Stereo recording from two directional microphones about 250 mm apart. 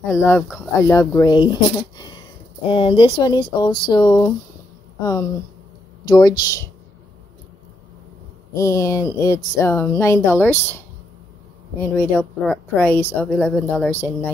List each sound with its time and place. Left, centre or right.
0.1 s a woman's voice: centre
6.0 s a woman's voice: centre
8.5 s a woman's voice: centre
11.8 s a woman's voice: centre